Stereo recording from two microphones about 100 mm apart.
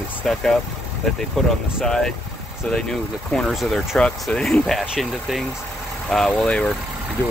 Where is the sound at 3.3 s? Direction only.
Centre (ahead or behind).